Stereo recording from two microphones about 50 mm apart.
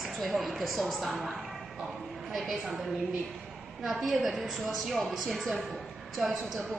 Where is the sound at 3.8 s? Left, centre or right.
Centre.